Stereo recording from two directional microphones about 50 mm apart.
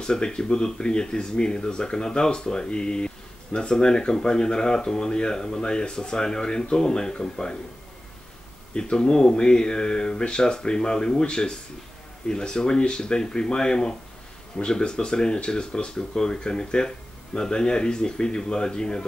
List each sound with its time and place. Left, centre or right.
0.0 s speech: centre
8.7 s speech: centre